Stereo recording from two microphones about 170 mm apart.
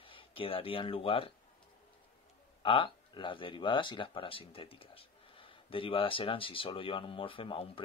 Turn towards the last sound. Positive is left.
turn(degrees=30)  # may be behind; listen again after turning